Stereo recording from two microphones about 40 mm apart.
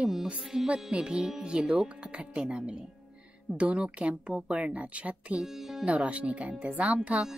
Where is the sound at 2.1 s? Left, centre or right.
Right.